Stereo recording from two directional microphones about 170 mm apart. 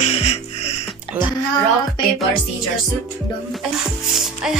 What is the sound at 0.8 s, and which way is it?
Music, 10° right (ahead or behind).